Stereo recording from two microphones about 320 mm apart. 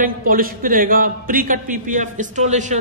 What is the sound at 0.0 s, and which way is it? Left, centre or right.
Speech, right.